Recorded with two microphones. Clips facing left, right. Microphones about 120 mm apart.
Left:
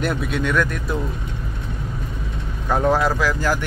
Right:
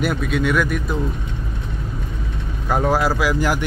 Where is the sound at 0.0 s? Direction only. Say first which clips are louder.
Right 2 dB; centre (ahead or behind).